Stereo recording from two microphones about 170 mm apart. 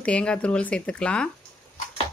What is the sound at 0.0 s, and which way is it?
Speech, 5° left (ahead or behind).